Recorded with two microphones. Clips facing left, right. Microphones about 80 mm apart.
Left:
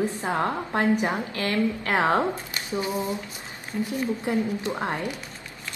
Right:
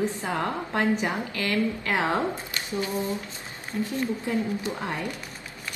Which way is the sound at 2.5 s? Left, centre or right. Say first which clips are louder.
Left 1 dB; left.